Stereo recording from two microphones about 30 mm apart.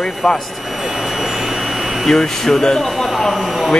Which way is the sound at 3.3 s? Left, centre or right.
Centre.